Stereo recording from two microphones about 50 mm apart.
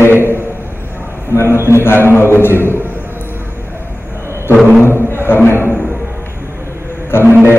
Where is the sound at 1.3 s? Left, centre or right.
Left.